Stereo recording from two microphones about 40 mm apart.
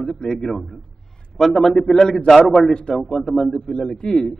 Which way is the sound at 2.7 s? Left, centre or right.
Left.